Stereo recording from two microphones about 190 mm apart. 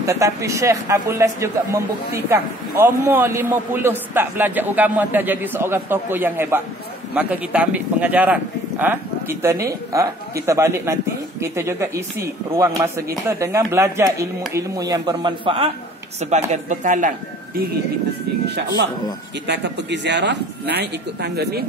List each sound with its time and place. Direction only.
0.0 s speech: 15° right (ahead or behind); by 17.1 s 45° right (ahead or behind)
19.4 s speech: 65° right (ahead or behind)